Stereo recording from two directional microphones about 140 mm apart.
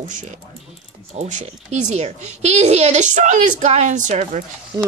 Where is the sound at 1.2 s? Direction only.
55° right (ahead or behind).